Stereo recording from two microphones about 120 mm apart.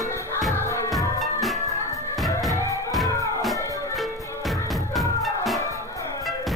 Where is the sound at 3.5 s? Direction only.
25° left (ahead or behind).